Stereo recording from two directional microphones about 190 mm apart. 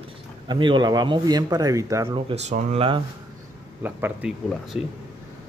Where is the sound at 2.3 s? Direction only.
35° right (ahead or behind).